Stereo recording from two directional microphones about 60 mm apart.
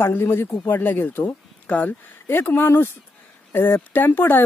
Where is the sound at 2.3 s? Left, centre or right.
Left.